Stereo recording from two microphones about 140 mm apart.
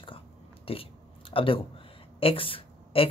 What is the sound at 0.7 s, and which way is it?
Biting, 45° left (ahead or behind).